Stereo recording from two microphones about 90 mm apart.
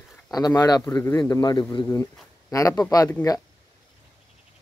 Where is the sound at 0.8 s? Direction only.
30° left (ahead or behind).